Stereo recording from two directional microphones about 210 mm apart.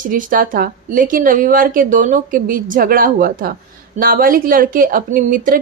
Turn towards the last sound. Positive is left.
turn(degrees=-40)  # may be behind; listen again after turning